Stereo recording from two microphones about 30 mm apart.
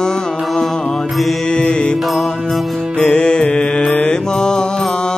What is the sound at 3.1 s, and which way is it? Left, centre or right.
Music, left.